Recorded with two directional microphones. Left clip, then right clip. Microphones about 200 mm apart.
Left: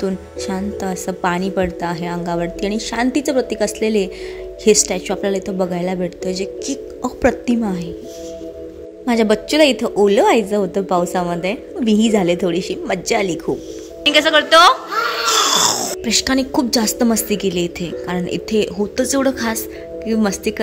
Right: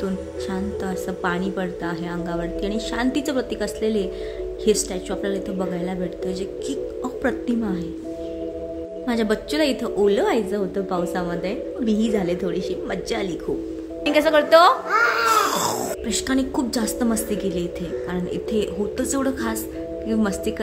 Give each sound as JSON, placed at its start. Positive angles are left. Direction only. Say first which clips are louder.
{"t": 0.0, "sound": "a woman's voice", "louder": "left 4 dB", "side_deg": 30}
{"t": 9.0, "sound": "a woman's voice", "louder": "left 8 dB", "side_deg": 30}
{"t": 14.0, "sound": "speech", "louder": "left 5 dB", "side_deg": -5}
{"t": 15.2, "sound": "a sound", "louder": "left 4 dB", "side_deg": -5}
{"t": 16.1, "sound": "a woman's voice", "louder": "left 8 dB", "side_deg": 30}